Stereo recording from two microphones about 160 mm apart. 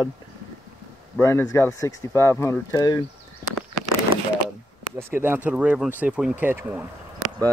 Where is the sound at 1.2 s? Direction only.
20° left (ahead or behind).